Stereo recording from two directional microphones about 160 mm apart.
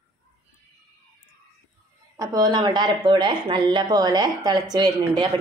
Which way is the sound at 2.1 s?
20° right (ahead or behind).